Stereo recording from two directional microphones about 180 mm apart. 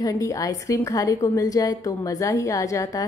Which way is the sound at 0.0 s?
20° left (ahead or behind).